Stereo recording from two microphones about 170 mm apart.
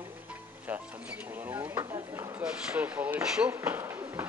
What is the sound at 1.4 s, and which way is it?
Speech, 10° right (ahead or behind).